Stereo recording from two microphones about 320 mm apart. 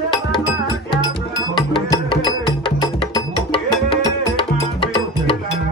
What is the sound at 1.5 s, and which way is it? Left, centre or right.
Music, centre.